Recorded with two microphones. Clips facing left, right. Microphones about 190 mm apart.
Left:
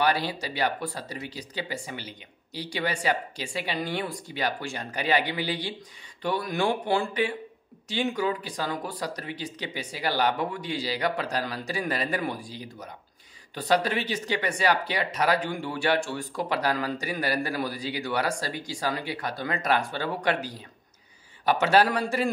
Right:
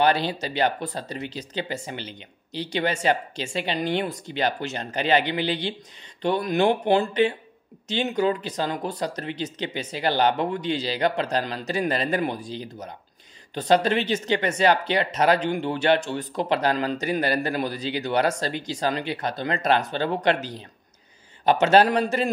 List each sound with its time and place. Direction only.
0.0 s speech: 25° right (ahead or behind)